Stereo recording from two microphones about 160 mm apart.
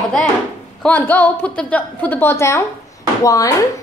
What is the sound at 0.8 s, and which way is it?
A woman's voice, 10° left (ahead or behind).